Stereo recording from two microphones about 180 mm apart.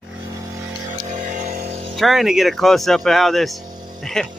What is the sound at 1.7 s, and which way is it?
Music, 35° right (ahead or behind).